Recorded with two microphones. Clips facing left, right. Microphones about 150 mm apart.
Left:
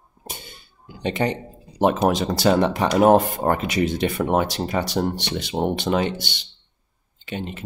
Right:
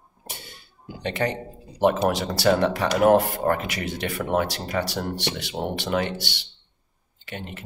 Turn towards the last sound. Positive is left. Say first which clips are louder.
# left 6 dB
turn(degrees=20)  # may be behind; listen again after turning